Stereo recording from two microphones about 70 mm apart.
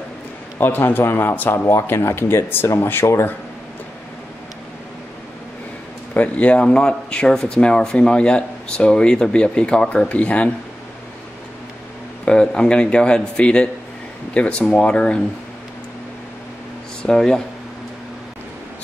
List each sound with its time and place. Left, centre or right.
0.6 s speech: left
6.1 s speech: centre
12.3 s speech: centre
17.0 s speech: centre